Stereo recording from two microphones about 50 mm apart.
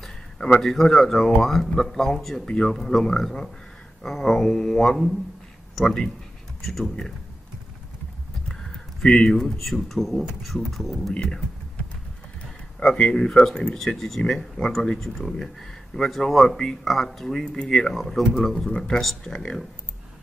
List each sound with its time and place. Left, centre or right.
0.0 s speech: centre
2.4 s speech: left
2.7 s speech: centre
8.5 s speech: centre
12.9 s speech: centre